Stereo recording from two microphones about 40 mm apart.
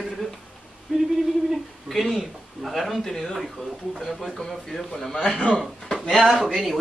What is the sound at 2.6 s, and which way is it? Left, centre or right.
Speech, centre.